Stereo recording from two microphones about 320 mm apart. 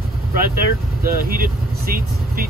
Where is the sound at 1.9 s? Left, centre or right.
Right.